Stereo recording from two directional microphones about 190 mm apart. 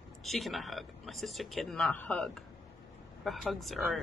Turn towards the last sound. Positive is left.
turn(degrees=0)  # may be behind; listen again after turning